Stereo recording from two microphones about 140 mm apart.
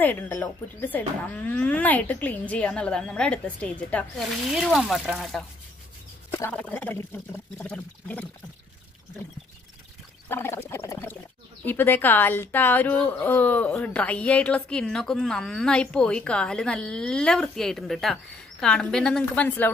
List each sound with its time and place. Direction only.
0.0 s a woman's voice: 15° left (ahead or behind)
4.5 s speech: centre (ahead or behind)
6.5 s a woman's voice: 10° left (ahead or behind)
10.2 s a woman's voice: 15° left (ahead or behind)